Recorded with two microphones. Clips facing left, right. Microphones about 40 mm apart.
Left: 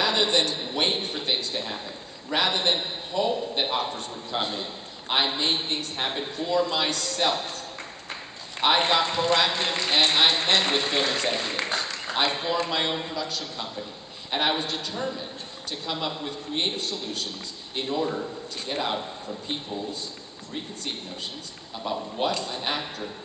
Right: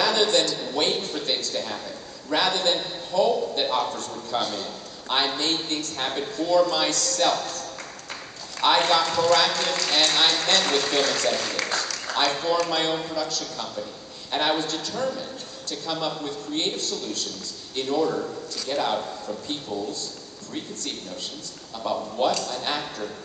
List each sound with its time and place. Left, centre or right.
0.0 s a man's voice: left
18.1 s a man's voice: centre
18.7 s a man's voice: left
21.8 s a man's voice: centre